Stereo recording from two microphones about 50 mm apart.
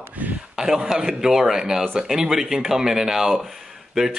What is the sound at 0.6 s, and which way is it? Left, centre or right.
Speech, centre.